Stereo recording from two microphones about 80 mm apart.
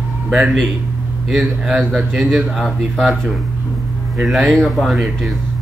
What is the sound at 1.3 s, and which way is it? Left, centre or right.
Speech, centre.